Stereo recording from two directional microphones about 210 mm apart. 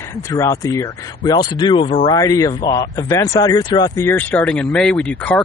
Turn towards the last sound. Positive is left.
turn(degrees=5)  # may be behind; listen again after turning